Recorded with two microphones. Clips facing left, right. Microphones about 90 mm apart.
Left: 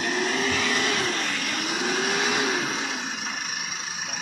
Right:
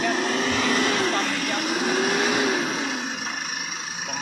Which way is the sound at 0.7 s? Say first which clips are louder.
Right 4 dB; 5° right (ahead or behind).